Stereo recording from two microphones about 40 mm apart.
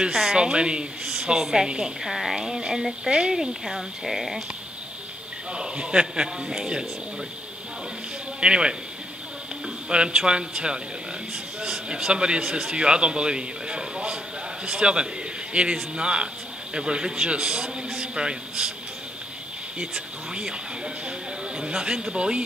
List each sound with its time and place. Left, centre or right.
0.0 s a man's voice: centre
2.0 s speech: centre
3.1 s a man's voice: right
3.3 s speech: centre
5.5 s a man's voice: right
8.4 s a man's voice: right
9.8 s a man's voice: centre
19.8 s a man's voice: centre